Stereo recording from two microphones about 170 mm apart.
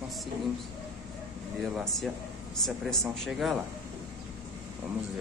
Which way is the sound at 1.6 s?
Centre (ahead or behind).